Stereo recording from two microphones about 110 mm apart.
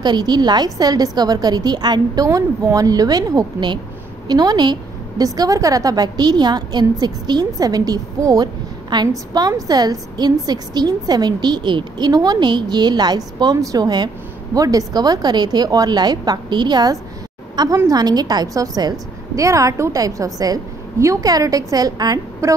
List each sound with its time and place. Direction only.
0.0 s a woman's voice: 40° right (ahead or behind)